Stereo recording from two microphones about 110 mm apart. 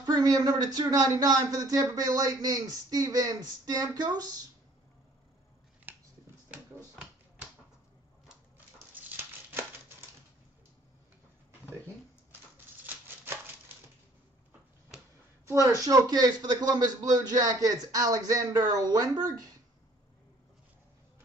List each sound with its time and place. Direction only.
0.0 s speech: 35° right (ahead or behind)
5.9 s a sound: 15° right (ahead or behind)
8.9 s dog: 20° right (ahead or behind)
15.4 s speech: 30° right (ahead or behind)